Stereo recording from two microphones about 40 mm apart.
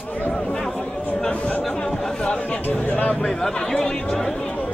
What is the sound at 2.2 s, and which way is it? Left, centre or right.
Chatter, left.